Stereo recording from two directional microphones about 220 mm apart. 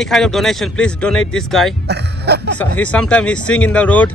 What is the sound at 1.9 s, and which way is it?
Speech, 50° right (ahead or behind).